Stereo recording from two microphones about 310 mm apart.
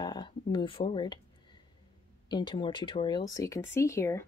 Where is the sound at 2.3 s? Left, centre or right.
Centre.